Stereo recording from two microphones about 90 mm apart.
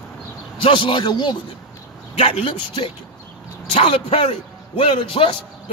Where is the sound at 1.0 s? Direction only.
50° left (ahead or behind).